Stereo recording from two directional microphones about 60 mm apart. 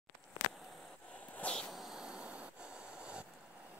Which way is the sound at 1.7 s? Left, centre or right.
Centre.